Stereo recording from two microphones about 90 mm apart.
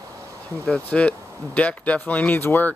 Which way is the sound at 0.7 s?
15° left (ahead or behind).